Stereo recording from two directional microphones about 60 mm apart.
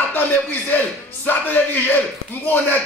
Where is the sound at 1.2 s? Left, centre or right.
Left.